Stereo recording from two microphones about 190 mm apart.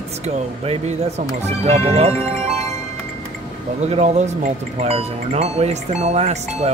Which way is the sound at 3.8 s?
35° right (ahead or behind).